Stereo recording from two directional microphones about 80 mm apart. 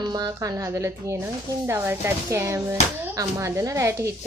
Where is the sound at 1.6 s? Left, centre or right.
Right.